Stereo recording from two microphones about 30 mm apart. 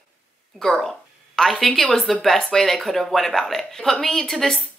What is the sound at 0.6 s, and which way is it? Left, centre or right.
Speech, left.